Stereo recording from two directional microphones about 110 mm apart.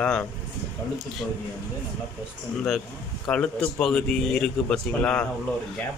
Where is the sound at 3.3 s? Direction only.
10° left (ahead or behind).